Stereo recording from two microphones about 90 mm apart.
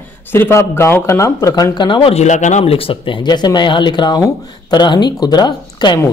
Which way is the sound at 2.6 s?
90° left.